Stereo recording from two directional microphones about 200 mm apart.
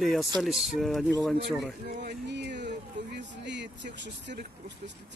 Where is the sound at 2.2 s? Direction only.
60° right (ahead or behind).